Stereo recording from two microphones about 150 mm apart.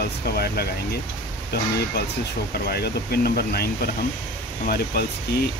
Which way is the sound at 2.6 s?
90° left.